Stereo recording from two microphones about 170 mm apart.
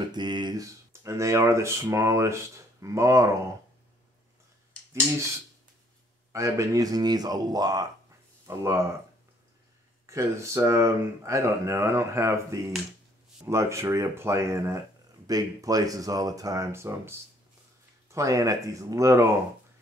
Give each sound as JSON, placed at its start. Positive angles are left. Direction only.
{"t": 0.1, "sound": "speech", "side_deg": -25}
{"t": 6.3, "sound": "speech", "side_deg": -15}
{"t": 10.0, "sound": "speech", "side_deg": -15}
{"t": 18.1, "sound": "speech", "side_deg": -20}